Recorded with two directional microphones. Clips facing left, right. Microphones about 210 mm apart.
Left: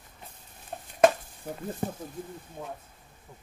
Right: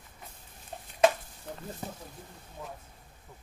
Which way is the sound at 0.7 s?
50° left (ahead or behind).